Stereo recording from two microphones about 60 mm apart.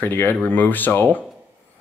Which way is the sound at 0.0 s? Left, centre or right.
Left.